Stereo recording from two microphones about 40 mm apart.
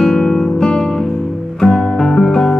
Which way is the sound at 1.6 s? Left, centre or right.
Centre.